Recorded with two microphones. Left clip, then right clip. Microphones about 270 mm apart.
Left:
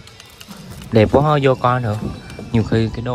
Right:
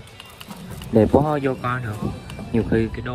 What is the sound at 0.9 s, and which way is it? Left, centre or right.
Speech, right.